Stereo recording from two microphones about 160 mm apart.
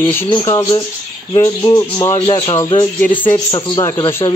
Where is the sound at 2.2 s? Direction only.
35° left (ahead or behind).